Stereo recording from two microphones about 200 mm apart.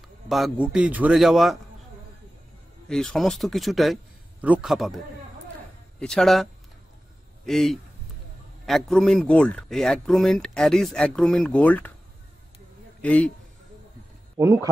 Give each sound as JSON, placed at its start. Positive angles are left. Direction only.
{"t": 0.3, "sound": "speech", "side_deg": 0}
{"t": 2.9, "sound": "speech", "side_deg": 0}
{"t": 13.0, "sound": "a man's voice", "side_deg": 5}
{"t": 14.3, "sound": "speech", "side_deg": -15}